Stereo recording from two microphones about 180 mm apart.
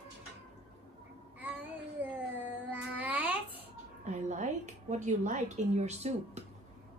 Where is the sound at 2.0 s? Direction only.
10° right (ahead or behind).